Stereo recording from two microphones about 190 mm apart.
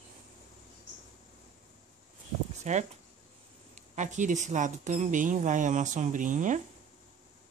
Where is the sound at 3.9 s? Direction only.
40° right (ahead or behind).